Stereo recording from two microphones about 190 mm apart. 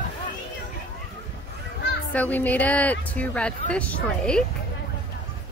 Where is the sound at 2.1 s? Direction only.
10° left (ahead or behind).